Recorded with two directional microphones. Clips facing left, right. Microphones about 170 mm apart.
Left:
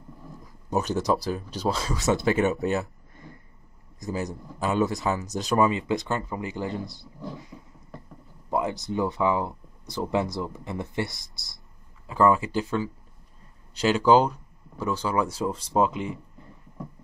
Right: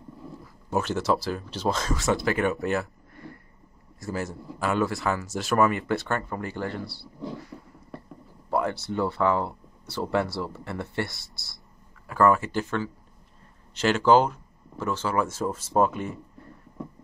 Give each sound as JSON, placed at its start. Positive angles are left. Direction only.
{"t": 0.7, "sound": "speech", "side_deg": 15}
{"t": 2.2, "sound": "speech", "side_deg": 25}
{"t": 4.0, "sound": "speech", "side_deg": 15}